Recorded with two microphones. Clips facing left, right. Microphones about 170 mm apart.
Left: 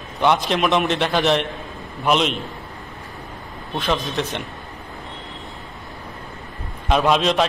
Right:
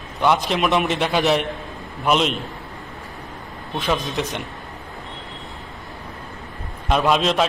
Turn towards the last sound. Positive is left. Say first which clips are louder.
# left 1 dB
turn(degrees=0)  # may be behind; listen again after turning